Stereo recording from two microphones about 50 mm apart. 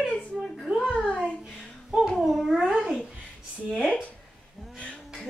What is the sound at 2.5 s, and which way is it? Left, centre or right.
Babbling, centre.